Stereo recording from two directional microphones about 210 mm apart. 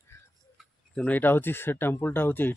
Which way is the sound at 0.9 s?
5° left (ahead or behind).